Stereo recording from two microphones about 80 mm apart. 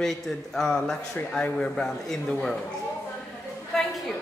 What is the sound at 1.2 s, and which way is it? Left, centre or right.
Speech, centre.